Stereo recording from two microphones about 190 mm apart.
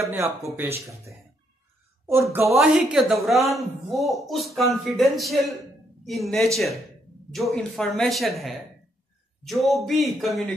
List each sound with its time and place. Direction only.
0.0 s speech: 15° right (ahead or behind)
2.0 s speech: 15° right (ahead or behind)
2.4 s speech: centre (ahead or behind)